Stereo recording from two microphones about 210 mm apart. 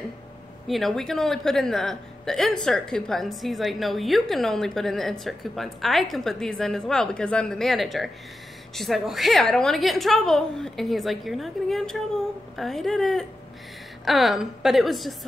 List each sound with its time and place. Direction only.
0.7 s a woman's voice: centre (ahead or behind)